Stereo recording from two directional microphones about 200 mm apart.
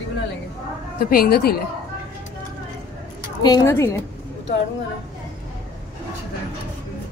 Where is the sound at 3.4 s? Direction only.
20° left (ahead or behind).